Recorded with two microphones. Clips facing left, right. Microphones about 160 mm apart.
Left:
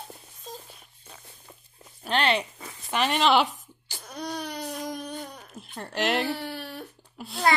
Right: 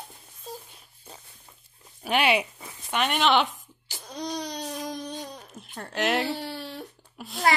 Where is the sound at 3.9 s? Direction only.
20° right (ahead or behind).